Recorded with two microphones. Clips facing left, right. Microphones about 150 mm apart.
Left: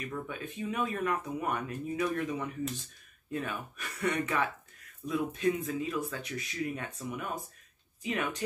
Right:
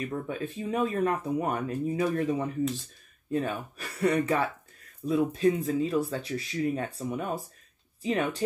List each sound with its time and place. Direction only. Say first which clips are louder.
0.0 s speech: right 6 dB; 35° right (ahead or behind)